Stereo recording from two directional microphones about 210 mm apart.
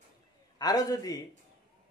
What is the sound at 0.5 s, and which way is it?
Speech, 20° left (ahead or behind).